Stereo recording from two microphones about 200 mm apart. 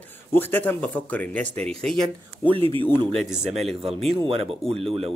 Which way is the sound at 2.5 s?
25° right (ahead or behind).